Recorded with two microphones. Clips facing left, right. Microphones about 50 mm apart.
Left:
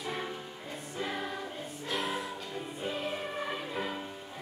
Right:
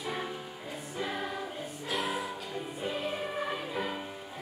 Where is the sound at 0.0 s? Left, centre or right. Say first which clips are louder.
Right 1 dB; centre.